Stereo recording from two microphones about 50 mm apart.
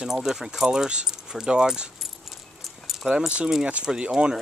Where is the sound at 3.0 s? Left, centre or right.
Right.